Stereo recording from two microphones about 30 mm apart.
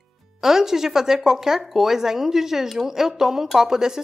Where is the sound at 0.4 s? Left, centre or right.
Centre.